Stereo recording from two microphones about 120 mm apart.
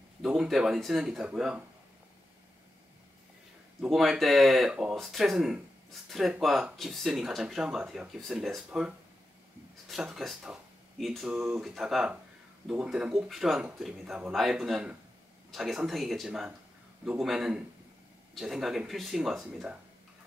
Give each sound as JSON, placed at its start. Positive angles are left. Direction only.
{"t": 0.2, "sound": "speech", "side_deg": -5}
{"t": 3.8, "sound": "speech", "side_deg": 0}